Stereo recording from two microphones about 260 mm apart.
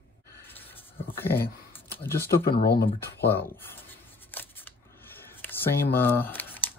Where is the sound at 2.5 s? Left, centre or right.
Left.